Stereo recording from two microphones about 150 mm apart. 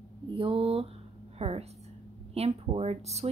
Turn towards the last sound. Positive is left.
turn(degrees=-45)  # may be behind; listen again after turning